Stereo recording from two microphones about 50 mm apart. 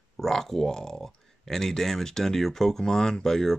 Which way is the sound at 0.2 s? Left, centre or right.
Centre.